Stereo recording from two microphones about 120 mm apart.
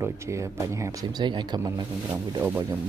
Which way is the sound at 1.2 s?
40° right (ahead or behind).